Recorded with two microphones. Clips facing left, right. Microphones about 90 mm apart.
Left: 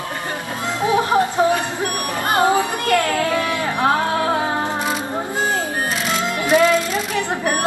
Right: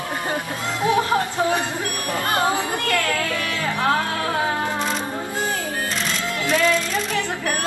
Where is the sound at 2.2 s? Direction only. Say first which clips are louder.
Left 5 dB; 20° left (ahead or behind).